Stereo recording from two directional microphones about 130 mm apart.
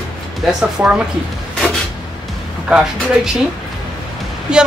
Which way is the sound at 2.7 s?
10° right (ahead or behind).